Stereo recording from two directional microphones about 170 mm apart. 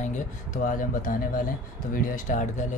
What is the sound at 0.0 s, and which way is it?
Speech, 45° left (ahead or behind).